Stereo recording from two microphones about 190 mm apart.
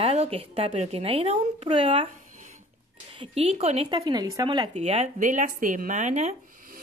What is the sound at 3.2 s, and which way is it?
Speech, 30° right (ahead or behind).